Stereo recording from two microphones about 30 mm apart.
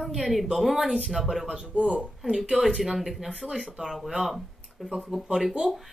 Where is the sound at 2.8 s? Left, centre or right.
Centre.